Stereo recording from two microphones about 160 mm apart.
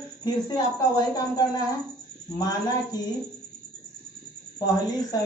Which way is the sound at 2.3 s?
25° left (ahead or behind).